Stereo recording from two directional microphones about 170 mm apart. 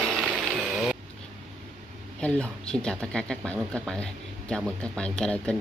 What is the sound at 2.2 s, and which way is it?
Speech, 5° left (ahead or behind).